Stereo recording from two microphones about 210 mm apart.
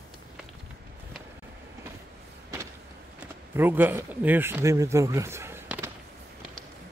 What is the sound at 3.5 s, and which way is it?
Speech, 10° right (ahead or behind).